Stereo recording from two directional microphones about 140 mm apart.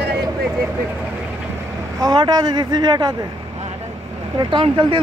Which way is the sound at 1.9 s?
30° right (ahead or behind).